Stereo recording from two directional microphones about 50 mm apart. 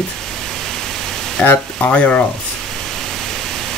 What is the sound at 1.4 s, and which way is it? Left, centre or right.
Speech, left.